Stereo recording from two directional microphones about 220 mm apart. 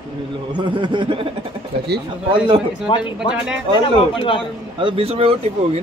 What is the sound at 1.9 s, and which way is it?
Speech, 45° right (ahead or behind).